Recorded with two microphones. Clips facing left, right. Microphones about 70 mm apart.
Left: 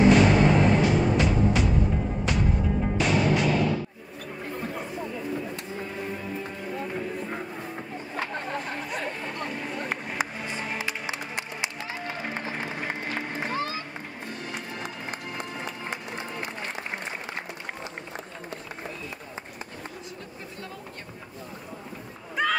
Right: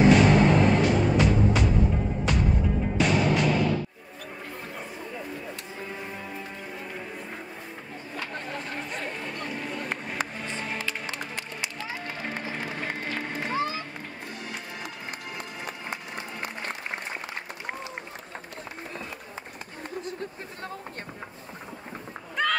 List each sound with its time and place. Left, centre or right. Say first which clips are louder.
0.0 s music: even; centre
3.0 s music: right 1 dB; centre
8.5 s chatter: left 2 dB; centre
9.4 s music: left 2 dB; centre
13.5 s music: right 4 dB; right
14.8 s music: left 2 dB; left
22.3 s music: left 1 dB; centre